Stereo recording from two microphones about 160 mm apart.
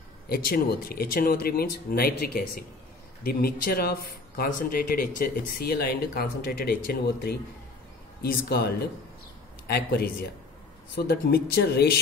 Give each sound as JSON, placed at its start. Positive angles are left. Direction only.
{"t": 0.3, "sound": "speech", "side_deg": 70}